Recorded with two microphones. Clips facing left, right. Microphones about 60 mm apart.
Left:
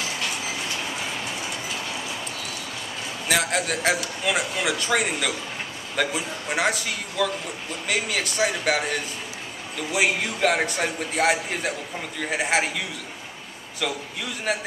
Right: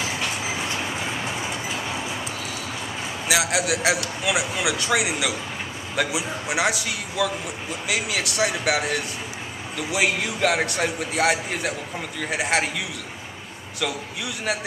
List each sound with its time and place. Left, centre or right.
0.0 s train: centre
3.3 s a man's voice: centre